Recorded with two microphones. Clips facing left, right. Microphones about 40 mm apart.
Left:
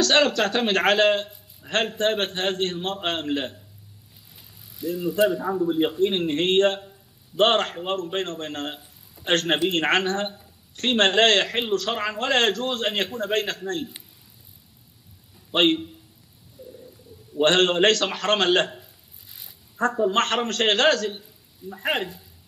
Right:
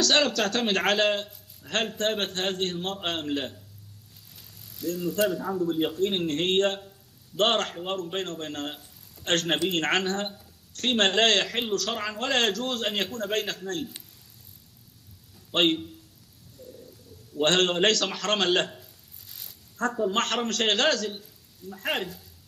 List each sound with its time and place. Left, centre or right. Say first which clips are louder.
0.0 s speech: left 4 dB; centre
4.6 s a man's voice: left 3 dB; centre
15.5 s speech: left 3 dB; centre
16.6 s a sound: left 3 dB; centre
17.4 s speech: left 4 dB; centre
19.3 s a sound: left 3 dB; centre
20.0 s speech: left 4 dB; centre